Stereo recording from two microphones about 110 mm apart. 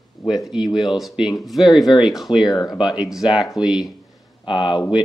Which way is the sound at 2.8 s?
5° right (ahead or behind).